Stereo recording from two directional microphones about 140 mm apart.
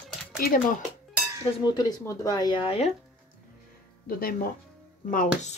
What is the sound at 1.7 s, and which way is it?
Speech, 30° left (ahead or behind).